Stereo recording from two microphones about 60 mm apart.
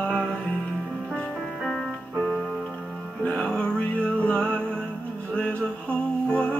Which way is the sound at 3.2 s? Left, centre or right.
Centre.